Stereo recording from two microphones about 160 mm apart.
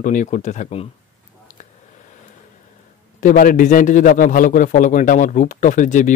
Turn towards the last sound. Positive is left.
turn(degrees=50)  # may be behind; listen again after turning